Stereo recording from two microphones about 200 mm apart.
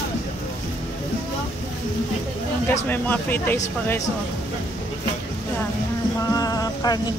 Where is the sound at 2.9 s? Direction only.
10° left (ahead or behind).